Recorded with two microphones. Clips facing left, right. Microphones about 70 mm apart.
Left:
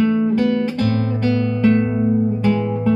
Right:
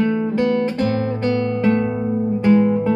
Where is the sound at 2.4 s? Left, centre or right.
Right.